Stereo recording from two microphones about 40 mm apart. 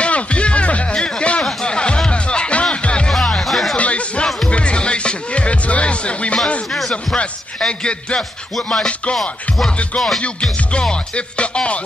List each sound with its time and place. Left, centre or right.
0.0 s music: left
3.1 s music: centre
3.4 s music: centre
3.7 s a sound: left
4.5 s music: left
6.7 s a sound: centre
7.2 s speech: left
9.1 s music: centre
10.7 s speech: left